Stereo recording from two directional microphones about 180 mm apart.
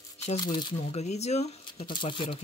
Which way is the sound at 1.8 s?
25° left (ahead or behind).